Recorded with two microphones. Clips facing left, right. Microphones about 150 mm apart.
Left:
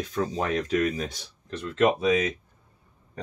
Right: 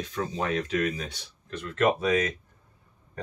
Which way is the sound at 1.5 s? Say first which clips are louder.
Left 2 dB; 20° left (ahead or behind).